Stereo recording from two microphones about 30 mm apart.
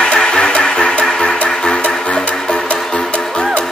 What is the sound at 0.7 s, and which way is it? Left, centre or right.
Music, left.